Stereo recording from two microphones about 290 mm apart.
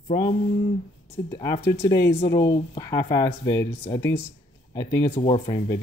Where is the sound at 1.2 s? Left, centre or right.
Centre.